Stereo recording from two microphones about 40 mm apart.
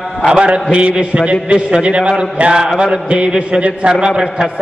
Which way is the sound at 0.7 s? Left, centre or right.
Right.